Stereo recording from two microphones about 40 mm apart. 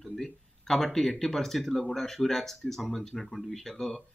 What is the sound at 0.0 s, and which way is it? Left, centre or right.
Speech, centre.